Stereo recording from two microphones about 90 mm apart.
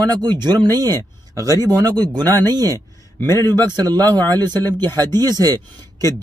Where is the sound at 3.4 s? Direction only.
50° right (ahead or behind).